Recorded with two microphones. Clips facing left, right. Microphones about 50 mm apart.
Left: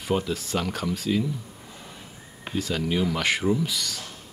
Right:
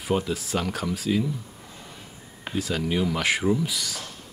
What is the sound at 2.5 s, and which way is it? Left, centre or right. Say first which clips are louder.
Speech: even; centre.